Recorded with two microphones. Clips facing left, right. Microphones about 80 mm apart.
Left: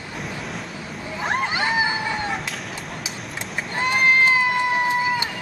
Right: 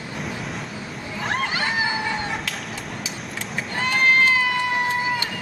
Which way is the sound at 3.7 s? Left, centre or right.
Centre.